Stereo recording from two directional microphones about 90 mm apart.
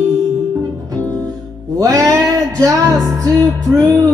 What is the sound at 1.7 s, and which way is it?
Music, 40° right (ahead or behind).